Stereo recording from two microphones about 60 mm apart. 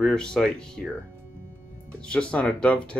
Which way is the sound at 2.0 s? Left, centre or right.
Centre.